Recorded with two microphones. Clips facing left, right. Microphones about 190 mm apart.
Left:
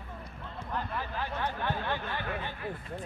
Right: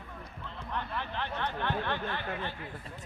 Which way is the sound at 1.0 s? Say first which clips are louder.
Left 1 dB; 10° left (ahead or behind).